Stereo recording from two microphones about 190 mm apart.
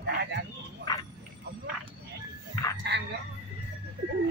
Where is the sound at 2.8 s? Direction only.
60° right (ahead or behind).